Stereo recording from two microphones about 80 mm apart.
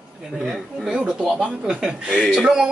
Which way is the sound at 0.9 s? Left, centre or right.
Centre.